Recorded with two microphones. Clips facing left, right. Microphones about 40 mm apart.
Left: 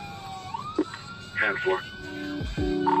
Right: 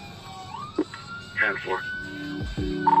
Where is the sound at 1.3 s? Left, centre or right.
Centre.